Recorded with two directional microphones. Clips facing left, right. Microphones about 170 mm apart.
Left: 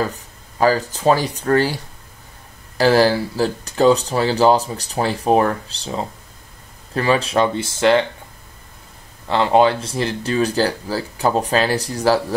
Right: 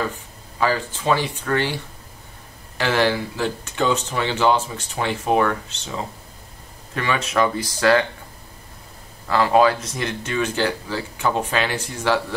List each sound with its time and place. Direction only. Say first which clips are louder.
0.0 s speech: left 3 dB; 40° left (ahead or behind)
2.8 s speech: left 6 dB; 35° left (ahead or behind)
9.3 s speech: left 2 dB; 25° left (ahead or behind)